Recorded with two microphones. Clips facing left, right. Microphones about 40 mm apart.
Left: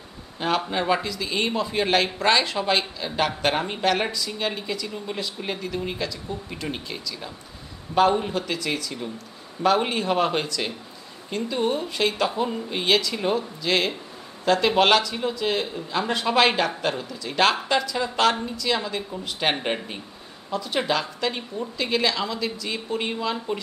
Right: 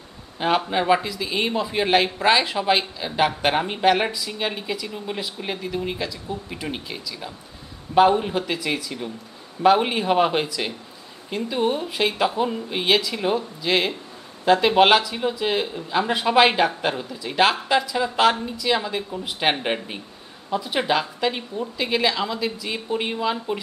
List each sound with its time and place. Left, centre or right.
0.4 s speech: centre